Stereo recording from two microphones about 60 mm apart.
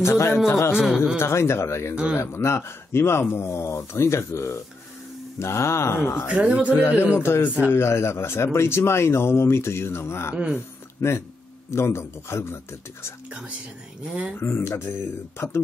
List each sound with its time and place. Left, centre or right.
0.0 s speech: left
0.7 s speech: centre
1.2 s speech: left
6.2 s speech: centre
7.2 s a man's voice: left
10.3 s speech: centre
11.0 s speech: left
14.4 s speech: left